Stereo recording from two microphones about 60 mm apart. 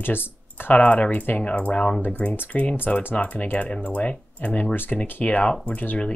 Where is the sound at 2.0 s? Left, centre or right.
Left.